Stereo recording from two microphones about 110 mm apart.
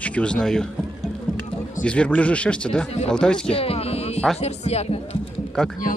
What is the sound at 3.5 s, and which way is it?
Speech, 60° left (ahead or behind).